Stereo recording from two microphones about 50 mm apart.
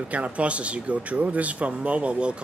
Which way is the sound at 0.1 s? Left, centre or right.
Right.